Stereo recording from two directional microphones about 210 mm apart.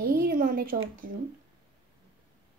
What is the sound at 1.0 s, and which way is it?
Speech, 40° right (ahead or behind).